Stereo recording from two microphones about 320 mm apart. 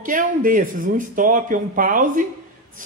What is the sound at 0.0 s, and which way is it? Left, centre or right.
A man's voice, right.